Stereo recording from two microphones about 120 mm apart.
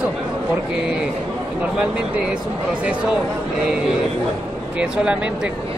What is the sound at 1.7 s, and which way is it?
A man's voice, 10° right (ahead or behind).